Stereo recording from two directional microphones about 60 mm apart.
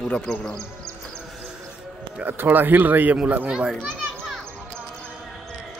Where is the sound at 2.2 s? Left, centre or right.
Right.